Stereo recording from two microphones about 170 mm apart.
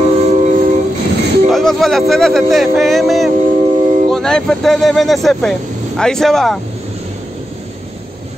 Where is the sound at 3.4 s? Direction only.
45° right (ahead or behind).